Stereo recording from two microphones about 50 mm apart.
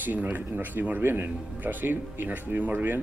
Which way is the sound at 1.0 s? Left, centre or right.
Right.